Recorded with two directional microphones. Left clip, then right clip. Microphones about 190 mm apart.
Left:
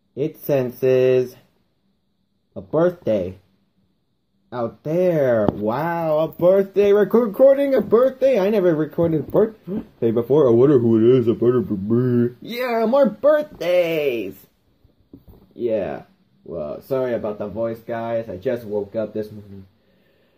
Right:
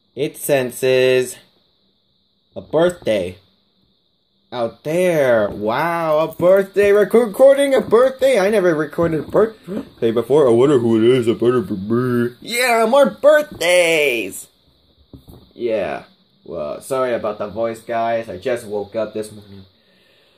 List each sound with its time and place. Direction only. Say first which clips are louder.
0.1 s speech: right 3 dB; 10° right (ahead or behind)
2.5 s speech: right 3 dB; 5° right (ahead or behind)
4.5 s speech: right 3 dB; 10° right (ahead or behind)
6.6 s a sound: right 2 dB; 35° right (ahead or behind)
7.1 s speech: right 3 dB; centre (ahead or behind)
15.5 s speech: right 2 dB; centre (ahead or behind)